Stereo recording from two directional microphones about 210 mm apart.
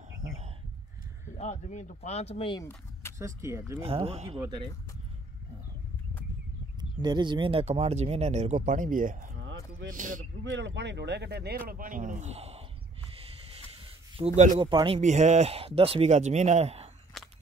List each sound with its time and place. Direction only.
1.3 s speech: 35° left (ahead or behind)
2.6 s a sound: 15° left (ahead or behind)
3.2 s speech: 15° right (ahead or behind)
3.8 s speech: 25° right (ahead or behind)
6.8 s speech: 20° right (ahead or behind); by 9.4 s 35° right (ahead or behind)
9.4 s a sound: 60° right (ahead or behind)
9.8 s speech: 40° right (ahead or behind)
10.4 s speech: 60° right (ahead or behind); by 12.6 s 30° right (ahead or behind)
13.1 s a sound: 25° right (ahead or behind)
14.1 s speech: 30° right (ahead or behind)
15.0 s speech: 35° right (ahead or behind)
17.1 s biting: centre (ahead or behind)